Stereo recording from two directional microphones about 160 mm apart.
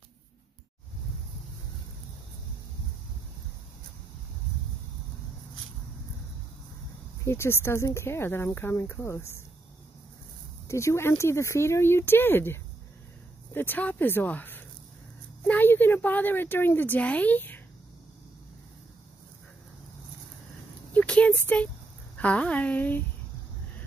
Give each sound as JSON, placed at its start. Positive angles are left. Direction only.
{"t": 7.2, "sound": "speech", "side_deg": 15}
{"t": 10.7, "sound": "speech", "side_deg": 15}
{"t": 20.9, "sound": "a sound", "side_deg": 10}
{"t": 22.1, "sound": "speech", "side_deg": 10}